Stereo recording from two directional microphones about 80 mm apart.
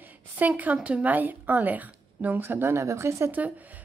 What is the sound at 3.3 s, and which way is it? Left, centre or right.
Speech, right.